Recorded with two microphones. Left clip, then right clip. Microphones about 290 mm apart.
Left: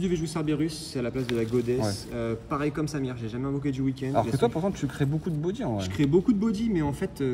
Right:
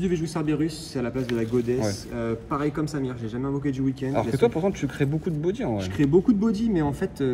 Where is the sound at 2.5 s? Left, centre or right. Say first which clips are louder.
Right 2 dB; centre.